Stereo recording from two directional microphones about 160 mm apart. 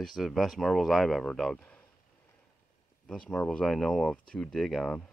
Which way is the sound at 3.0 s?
5° left (ahead or behind).